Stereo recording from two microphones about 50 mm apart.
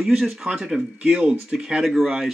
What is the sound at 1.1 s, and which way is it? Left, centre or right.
Speech, right.